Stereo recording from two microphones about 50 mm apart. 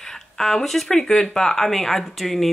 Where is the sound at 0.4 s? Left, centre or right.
Centre.